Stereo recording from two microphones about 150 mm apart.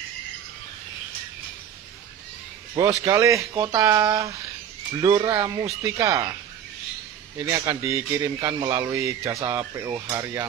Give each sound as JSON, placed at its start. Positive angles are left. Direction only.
{"t": 2.8, "sound": "a man's voice", "side_deg": -15}
{"t": 7.3, "sound": "speech", "side_deg": -15}